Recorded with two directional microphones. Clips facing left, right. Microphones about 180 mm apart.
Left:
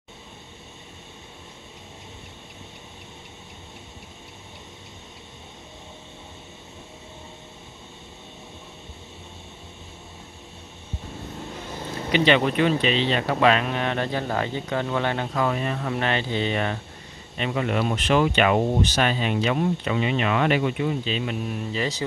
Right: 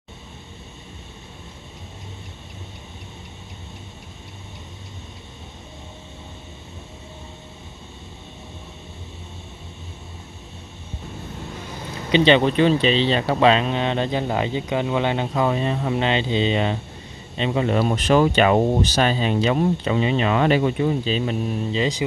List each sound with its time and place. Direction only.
12.1 s speech: 25° right (ahead or behind)
21.7 s speech: 15° right (ahead or behind)